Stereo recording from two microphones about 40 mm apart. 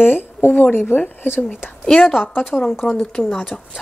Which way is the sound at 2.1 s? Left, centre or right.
Left.